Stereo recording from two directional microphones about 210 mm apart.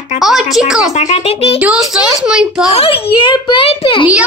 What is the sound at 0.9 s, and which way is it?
Speech, 30° left (ahead or behind).